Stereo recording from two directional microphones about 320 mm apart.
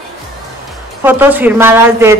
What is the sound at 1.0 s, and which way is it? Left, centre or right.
Speech, centre.